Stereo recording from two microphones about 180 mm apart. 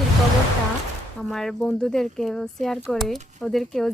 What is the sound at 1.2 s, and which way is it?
Speech, centre (ahead or behind).